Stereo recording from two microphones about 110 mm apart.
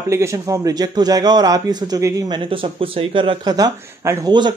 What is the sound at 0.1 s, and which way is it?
A man's voice, 25° right (ahead or behind).